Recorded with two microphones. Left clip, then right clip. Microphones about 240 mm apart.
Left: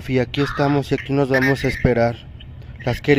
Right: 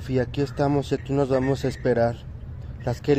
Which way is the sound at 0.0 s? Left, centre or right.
Centre.